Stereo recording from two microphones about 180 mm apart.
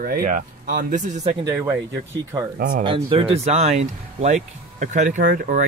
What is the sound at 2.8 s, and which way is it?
Speech, 30° right (ahead or behind).